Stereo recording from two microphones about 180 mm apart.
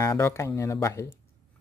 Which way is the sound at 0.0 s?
15° left (ahead or behind).